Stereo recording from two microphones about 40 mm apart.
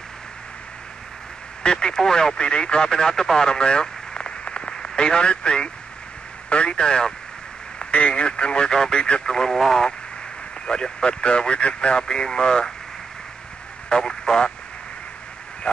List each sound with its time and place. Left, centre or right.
1.6 s speech: centre
7.8 s a sound: left
8.1 s speech: left
9.0 s speech: left
9.3 s speech: centre
10.7 s speech: centre
13.8 s speech: centre
15.7 s a sound: left